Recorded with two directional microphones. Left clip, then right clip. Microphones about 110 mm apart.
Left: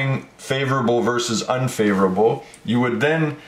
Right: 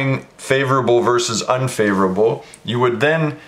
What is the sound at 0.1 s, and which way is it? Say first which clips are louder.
Speech: right 6 dB; 45° right (ahead or behind).